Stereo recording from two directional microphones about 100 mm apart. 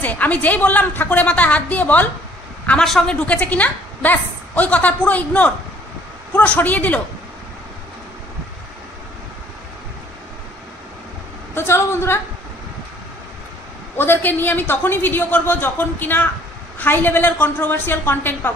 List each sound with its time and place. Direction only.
0.0 s a woman's voice: 15° left (ahead or behind)
11.5 s a woman's voice: 25° left (ahead or behind)
13.9 s a woman's voice: 20° left (ahead or behind)